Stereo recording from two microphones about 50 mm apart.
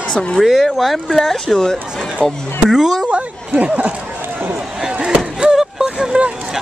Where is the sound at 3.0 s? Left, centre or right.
Right.